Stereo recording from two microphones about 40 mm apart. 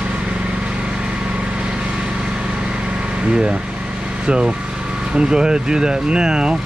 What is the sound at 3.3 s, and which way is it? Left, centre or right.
Speech, centre.